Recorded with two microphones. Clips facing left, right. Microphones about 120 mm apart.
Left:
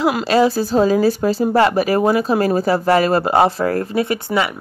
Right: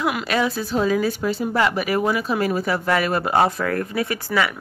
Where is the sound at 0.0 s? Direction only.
30° left (ahead or behind).